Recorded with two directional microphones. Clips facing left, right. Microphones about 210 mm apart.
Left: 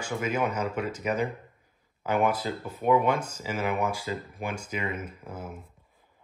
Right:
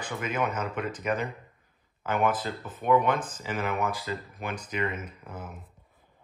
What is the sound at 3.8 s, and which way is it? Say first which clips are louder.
Speech: left 1 dB; 10° left (ahead or behind).